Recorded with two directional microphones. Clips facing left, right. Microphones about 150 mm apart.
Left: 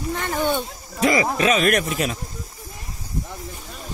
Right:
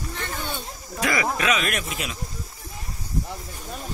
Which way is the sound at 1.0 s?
25° left (ahead or behind).